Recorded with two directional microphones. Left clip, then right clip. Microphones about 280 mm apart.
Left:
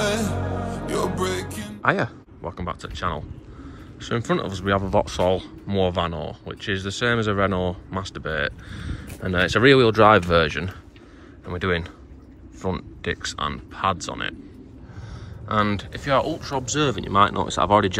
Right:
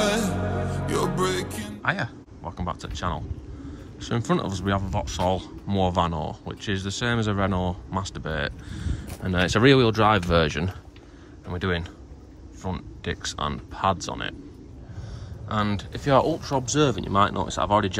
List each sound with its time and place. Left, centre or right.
0.0 s music: centre
0.8 s speech: centre
1.9 s speech: centre
15.4 s speech: centre